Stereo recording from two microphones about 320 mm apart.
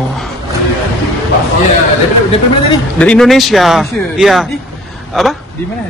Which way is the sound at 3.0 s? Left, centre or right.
Centre.